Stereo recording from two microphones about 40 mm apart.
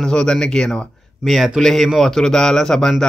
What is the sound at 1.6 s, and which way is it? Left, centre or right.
Speech, centre.